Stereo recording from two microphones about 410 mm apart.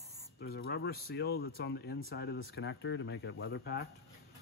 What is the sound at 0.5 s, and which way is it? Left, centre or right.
Speech, left.